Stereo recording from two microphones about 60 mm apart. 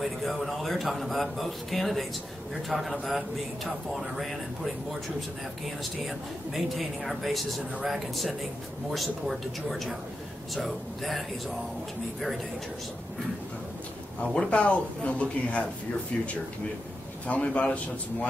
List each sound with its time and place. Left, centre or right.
0.0 s speech: centre
6.0 s speech: centre
14.2 s speech: centre
17.3 s speech: left